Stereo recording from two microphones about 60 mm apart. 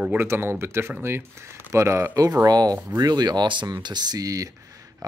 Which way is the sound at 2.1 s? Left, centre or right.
Right.